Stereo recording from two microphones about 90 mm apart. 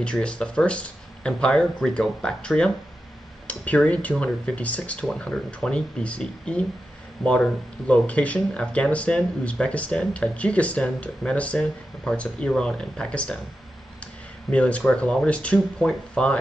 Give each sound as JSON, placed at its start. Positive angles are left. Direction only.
{"t": 0.0, "sound": "speech", "side_deg": 10}
{"t": 14.5, "sound": "speech", "side_deg": 10}